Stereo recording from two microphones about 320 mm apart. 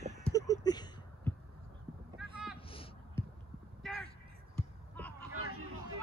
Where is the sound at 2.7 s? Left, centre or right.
Centre.